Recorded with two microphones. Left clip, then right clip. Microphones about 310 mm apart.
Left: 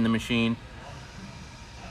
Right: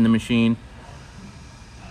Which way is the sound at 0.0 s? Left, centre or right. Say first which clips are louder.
Right 6 dB; right.